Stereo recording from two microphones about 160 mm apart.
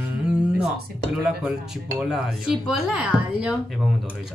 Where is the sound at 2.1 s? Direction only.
5° right (ahead or behind).